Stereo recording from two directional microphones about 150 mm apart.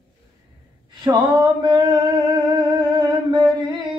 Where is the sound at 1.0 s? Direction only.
30° right (ahead or behind).